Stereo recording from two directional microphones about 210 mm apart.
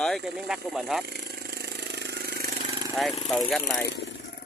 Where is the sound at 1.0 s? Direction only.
50° right (ahead or behind).